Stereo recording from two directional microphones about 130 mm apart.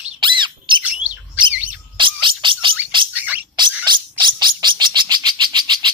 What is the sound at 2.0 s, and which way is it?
Bird, 40° right (ahead or behind).